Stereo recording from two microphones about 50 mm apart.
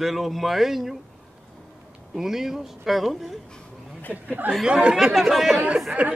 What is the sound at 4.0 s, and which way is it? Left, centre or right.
Speech, left.